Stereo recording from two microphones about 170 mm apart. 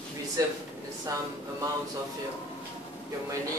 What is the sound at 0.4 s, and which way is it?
Speech, 20° right (ahead or behind).